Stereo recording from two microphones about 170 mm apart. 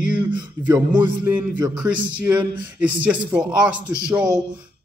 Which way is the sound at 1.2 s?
10° right (ahead or behind).